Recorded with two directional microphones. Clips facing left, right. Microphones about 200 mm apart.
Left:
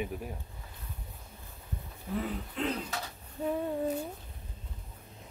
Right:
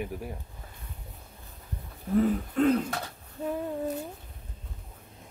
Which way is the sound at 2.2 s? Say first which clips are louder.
Right 10 dB; 50° right (ahead or behind).